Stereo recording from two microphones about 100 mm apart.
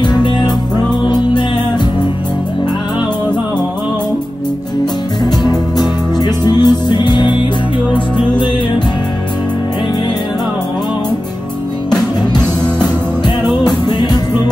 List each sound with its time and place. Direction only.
0.0 s music: 50° left (ahead or behind)
5.2 s music: 45° left (ahead or behind)
13.8 s music: 45° left (ahead or behind)